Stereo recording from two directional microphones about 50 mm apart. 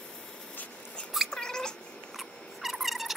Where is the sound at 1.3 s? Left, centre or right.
Centre.